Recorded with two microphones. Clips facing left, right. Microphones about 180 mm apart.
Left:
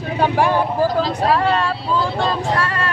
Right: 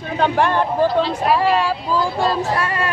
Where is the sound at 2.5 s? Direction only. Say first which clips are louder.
Even; 15° right (ahead or behind).